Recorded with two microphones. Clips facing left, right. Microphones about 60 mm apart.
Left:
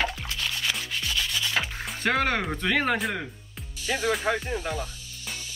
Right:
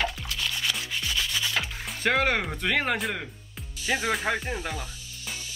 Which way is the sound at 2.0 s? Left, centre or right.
Centre.